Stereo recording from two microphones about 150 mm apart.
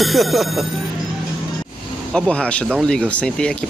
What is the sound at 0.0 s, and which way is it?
Speech, centre (ahead or behind).